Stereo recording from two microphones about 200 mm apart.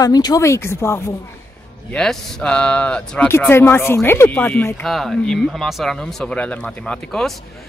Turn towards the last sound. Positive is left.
turn(degrees=0)  # may be behind; listen again after turning